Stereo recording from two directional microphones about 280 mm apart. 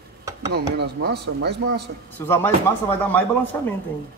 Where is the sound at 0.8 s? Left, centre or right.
Right.